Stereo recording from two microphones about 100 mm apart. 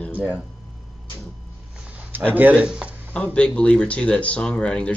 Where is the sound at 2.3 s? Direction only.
15° right (ahead or behind).